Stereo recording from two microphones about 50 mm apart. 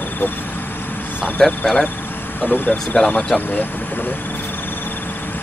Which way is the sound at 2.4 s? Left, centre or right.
Left.